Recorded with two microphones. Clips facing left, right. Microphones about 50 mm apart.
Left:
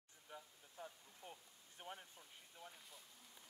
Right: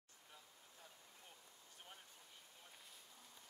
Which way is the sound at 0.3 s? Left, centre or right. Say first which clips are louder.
Left 7 dB; left.